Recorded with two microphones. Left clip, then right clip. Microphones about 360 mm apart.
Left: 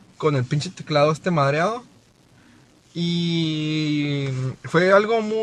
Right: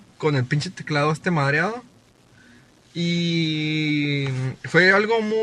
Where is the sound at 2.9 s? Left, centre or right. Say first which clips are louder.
Right 1 dB; left.